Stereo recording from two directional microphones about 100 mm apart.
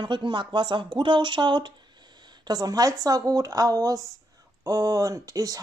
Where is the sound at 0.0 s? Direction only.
50° right (ahead or behind).